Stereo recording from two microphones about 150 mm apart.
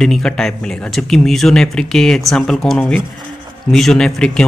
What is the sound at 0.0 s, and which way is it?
Speech, 5° left (ahead or behind).